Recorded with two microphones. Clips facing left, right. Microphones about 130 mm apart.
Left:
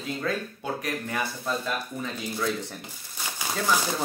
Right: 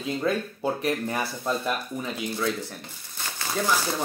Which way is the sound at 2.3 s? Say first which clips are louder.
Even; centre (ahead or behind).